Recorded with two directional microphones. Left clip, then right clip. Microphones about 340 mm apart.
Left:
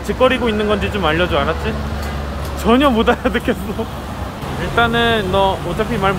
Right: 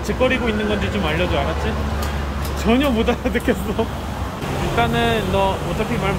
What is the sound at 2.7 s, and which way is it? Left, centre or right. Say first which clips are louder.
Speech: left 5 dB; centre.